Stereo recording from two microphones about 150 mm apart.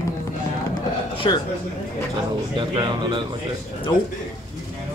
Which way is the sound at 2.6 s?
30° right (ahead or behind).